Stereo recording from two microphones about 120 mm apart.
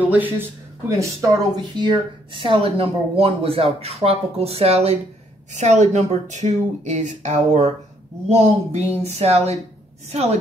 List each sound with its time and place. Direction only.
0.0 s speech: 15° right (ahead or behind)
0.8 s speech: 30° right (ahead or behind); by 4.9 s 60° right (ahead or behind)
5.5 s speech: 75° right (ahead or behind)
8.7 s speech: 65° right (ahead or behind)